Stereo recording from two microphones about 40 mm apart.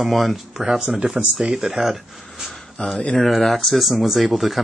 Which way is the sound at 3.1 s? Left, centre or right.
Centre.